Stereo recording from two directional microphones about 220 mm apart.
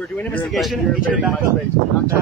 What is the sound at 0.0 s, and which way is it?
A man's voice, 5° left (ahead or behind).